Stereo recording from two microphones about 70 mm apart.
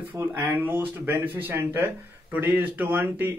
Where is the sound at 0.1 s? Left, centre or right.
Right.